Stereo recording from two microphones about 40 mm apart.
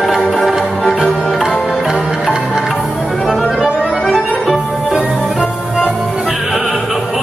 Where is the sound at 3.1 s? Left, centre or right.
Centre.